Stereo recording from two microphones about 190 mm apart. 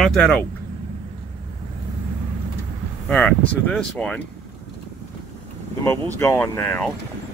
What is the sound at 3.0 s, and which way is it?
Speech, 5° left (ahead or behind).